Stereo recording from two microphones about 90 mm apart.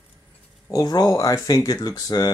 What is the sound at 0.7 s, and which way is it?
Speech, 45° left (ahead or behind).